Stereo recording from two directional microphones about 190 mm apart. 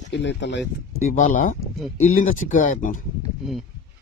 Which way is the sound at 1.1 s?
45° left (ahead or behind).